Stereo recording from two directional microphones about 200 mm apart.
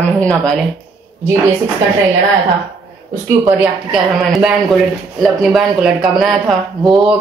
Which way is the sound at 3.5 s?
Centre (ahead or behind).